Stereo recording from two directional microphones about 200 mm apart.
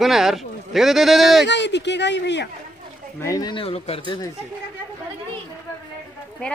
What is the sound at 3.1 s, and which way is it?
Speech, 15° left (ahead or behind).